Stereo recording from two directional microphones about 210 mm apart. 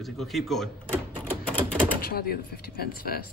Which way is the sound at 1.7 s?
5° left (ahead or behind).